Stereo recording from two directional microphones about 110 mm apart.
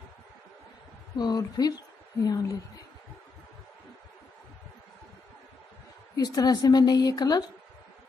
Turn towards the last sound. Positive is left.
turn(degrees=35)  # may be behind; listen again after turning